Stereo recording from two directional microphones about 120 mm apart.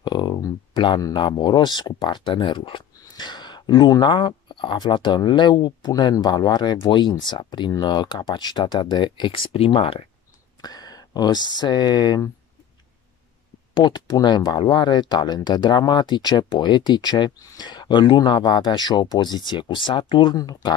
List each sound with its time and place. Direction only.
0.0 s speech: 40° left (ahead or behind)
10.6 s speech: 35° left (ahead or behind)
13.7 s speech: 40° left (ahead or behind)